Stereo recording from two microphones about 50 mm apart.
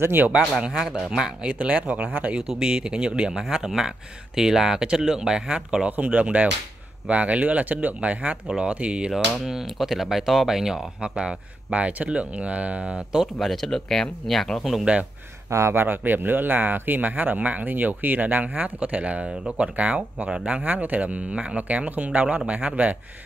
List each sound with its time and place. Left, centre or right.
0.4 s speech: centre
0.7 s speech: centre
1.5 s speech: right
5.9 s speech: right
9.5 s speech: centre
13.4 s speech: centre
15.5 s speech: right
15.8 s speech: right
19.2 s speech: centre